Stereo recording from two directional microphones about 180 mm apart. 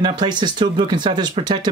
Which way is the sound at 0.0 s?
25° right (ahead or behind).